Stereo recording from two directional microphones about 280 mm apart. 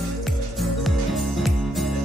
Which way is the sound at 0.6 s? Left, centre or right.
Centre.